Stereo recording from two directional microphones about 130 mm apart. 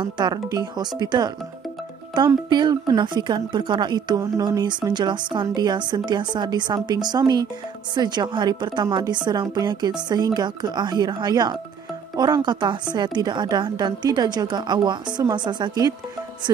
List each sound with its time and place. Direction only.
0.0 s speech: 30° right (ahead or behind)